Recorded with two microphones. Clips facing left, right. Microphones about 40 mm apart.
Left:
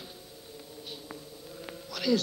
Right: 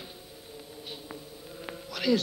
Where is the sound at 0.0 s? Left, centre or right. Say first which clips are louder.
Right 1 dB; centre.